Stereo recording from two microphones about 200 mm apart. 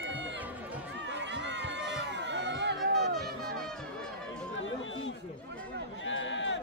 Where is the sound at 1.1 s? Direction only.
60° right (ahead or behind).